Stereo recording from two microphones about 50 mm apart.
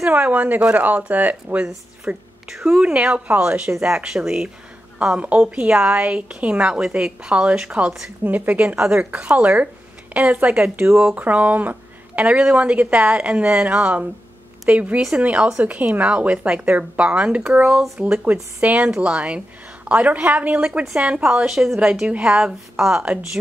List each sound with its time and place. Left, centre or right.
0.0 s speech: right
2.5 s a woman's voice: centre
8.2 s a woman's voice: right
21.0 s a woman's voice: centre
22.0 s a woman's voice: right